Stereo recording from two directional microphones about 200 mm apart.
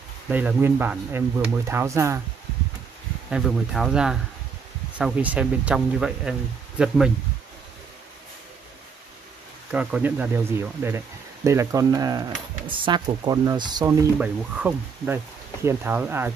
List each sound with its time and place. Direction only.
0.3 s speech: 10° right (ahead or behind)
3.3 s speech: centre (ahead or behind)
9.7 s speech: 5° right (ahead or behind)
14.1 s speech: 5° right (ahead or behind)